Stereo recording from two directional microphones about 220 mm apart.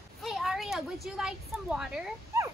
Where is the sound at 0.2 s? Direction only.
Centre (ahead or behind).